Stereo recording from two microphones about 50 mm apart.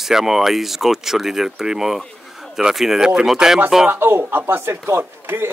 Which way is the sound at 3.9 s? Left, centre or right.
Right.